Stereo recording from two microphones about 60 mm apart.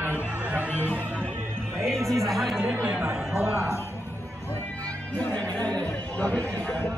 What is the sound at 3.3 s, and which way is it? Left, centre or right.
Speech, right.